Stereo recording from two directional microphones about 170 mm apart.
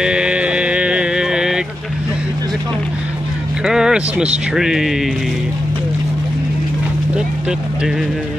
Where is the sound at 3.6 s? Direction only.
5° right (ahead or behind).